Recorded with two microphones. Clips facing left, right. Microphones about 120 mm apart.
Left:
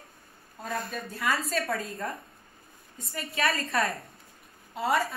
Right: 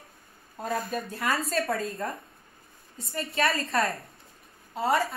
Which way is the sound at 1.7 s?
25° right (ahead or behind).